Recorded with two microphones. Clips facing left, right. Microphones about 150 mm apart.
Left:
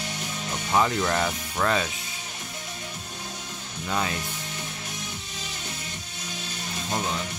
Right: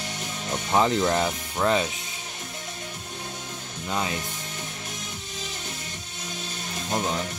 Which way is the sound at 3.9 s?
20° right (ahead or behind).